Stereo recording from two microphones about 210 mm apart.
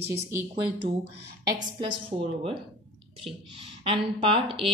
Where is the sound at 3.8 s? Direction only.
25° right (ahead or behind).